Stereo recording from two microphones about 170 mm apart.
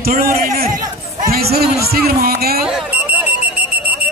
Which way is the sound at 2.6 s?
Centre (ahead or behind).